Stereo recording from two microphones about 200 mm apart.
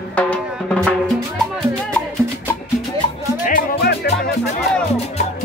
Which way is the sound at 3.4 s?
50° left (ahead or behind).